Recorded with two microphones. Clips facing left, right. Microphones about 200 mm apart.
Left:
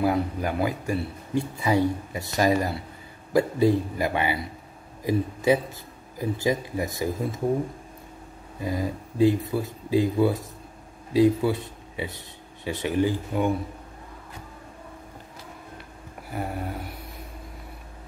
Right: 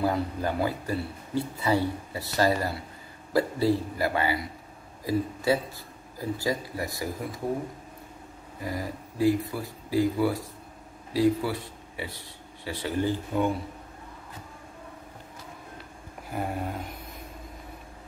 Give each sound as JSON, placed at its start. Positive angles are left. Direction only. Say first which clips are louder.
{"t": 0.0, "sound": "speech", "louder": "left 3 dB", "side_deg": 15}
{"t": 8.5, "sound": "speech", "louder": "left 5 dB", "side_deg": 20}
{"t": 16.3, "sound": "a sound", "louder": "even", "side_deg": 5}